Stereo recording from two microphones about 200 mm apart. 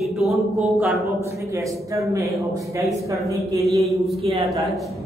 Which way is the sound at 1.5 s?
15° right (ahead or behind).